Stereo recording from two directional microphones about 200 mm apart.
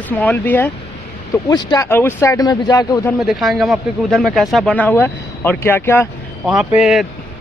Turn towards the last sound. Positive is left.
turn(degrees=0)  # may be behind; listen again after turning